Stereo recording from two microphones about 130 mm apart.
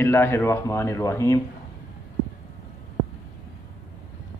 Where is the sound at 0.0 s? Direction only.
15° left (ahead or behind).